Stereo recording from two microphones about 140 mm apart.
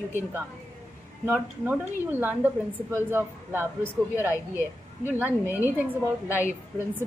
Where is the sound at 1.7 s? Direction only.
15° right (ahead or behind).